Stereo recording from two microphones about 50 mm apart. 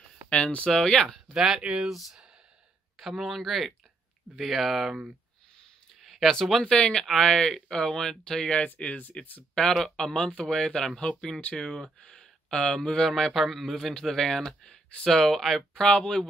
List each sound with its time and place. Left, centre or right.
0.3 s speech: left
0.7 s speech: centre
1.3 s speech: centre
5.9 s a sound: centre
6.7 s speech: centre
8.5 s speech: left
9.6 s speech: centre